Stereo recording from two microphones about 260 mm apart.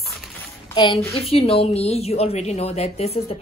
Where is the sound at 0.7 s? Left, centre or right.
Centre.